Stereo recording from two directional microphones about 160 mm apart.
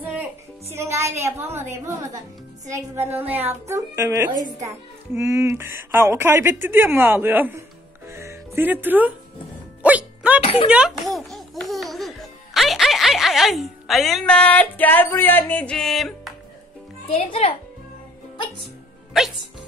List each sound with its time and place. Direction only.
0.7 s speech: 15° right (ahead or behind)
8.1 s music: 15° right (ahead or behind)
10.4 s a child's voice: 40° left (ahead or behind)
10.7 s a child's voice: 5° right (ahead or behind)
17.1 s a child's voice: 35° left (ahead or behind)